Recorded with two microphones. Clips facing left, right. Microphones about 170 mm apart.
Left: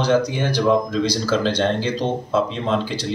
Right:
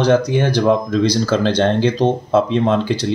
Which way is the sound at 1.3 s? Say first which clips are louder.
Right 4 dB; 55° right (ahead or behind).